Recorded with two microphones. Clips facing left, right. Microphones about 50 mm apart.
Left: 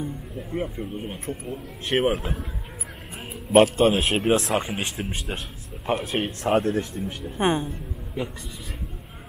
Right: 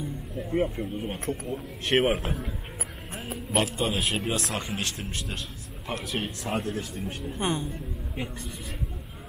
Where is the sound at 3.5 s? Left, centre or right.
Left.